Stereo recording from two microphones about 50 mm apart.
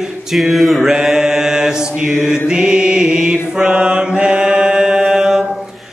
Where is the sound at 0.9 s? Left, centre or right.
Centre.